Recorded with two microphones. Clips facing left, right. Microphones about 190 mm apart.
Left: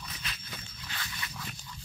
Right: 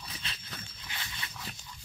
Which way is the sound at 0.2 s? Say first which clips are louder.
Left 3 dB; 30° right (ahead or behind).